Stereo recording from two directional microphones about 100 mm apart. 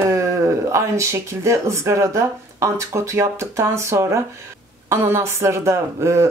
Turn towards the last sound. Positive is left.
turn(degrees=-30)  # may be behind; listen again after turning